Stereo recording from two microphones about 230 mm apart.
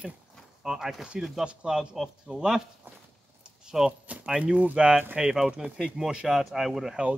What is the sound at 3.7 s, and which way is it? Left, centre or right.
Speech, centre.